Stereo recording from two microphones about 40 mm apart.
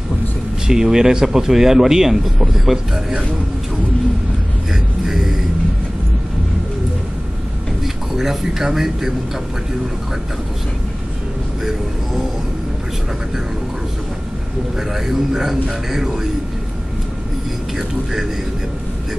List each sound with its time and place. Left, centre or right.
0.7 s speech: centre
5.0 s music: centre
7.8 s a sound: centre
8.7 s speech: centre
14.8 s speech: centre